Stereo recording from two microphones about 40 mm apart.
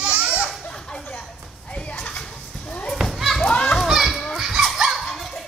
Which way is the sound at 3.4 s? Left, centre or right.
Left.